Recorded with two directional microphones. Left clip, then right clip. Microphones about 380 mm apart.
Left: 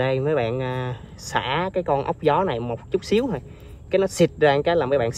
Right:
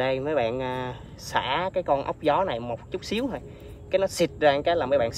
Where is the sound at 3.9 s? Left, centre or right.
Centre.